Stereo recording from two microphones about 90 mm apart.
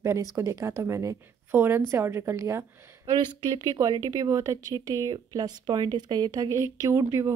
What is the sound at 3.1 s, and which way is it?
Speech, 60° right (ahead or behind).